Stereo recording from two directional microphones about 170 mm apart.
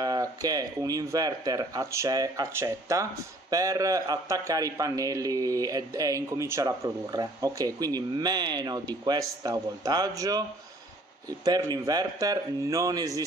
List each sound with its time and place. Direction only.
0.0 s speech: 20° right (ahead or behind)
11.4 s speech: 20° right (ahead or behind)